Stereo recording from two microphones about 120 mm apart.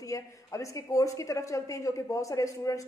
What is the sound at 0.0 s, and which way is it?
A woman's voice, 25° left (ahead or behind).